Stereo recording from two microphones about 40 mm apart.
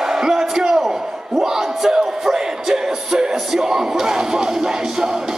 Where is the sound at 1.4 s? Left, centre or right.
Centre.